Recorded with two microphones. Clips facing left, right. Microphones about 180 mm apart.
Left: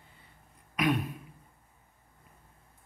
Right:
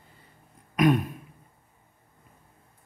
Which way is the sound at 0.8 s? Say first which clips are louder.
Right 7 dB; 45° right (ahead or behind).